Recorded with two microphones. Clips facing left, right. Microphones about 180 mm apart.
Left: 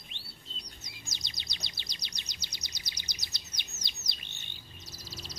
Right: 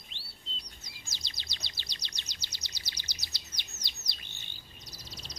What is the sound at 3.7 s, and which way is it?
Bird, 20° left (ahead or behind).